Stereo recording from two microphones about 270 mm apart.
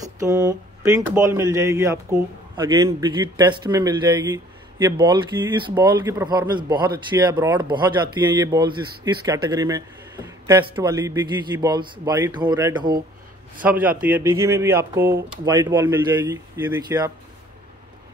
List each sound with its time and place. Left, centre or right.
0.0 s speech: centre